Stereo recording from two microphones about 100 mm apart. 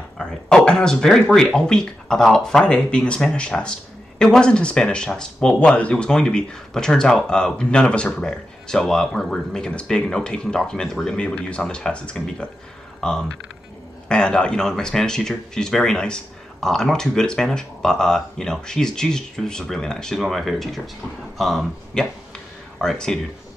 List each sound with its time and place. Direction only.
0.2 s speech: 10° left (ahead or behind)